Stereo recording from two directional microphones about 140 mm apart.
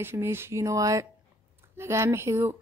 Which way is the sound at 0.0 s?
15° right (ahead or behind).